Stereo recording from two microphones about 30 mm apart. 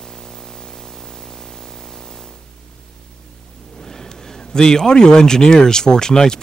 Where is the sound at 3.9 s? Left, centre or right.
Centre.